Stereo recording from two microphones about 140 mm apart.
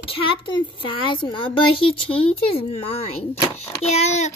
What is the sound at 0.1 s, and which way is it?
A child's voice, 40° left (ahead or behind).